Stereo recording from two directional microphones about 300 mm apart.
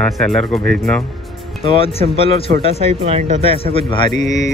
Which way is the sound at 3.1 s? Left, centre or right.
Right.